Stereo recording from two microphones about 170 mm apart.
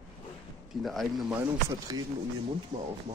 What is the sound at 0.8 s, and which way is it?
Speech, centre (ahead or behind).